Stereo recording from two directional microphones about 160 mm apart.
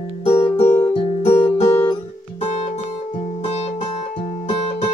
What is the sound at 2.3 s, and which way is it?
Music, 45° left (ahead or behind).